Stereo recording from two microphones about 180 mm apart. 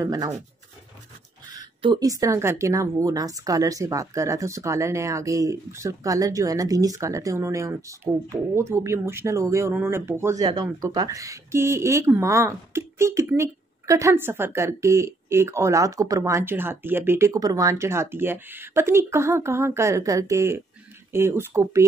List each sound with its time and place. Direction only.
0.0 s speech: 20° right (ahead or behind)
1.5 s speech: 25° right (ahead or behind)